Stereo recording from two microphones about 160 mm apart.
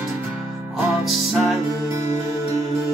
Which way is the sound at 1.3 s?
Centre (ahead or behind).